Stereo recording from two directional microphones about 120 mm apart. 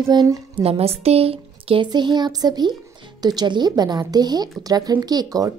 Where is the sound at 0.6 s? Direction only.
55° right (ahead or behind).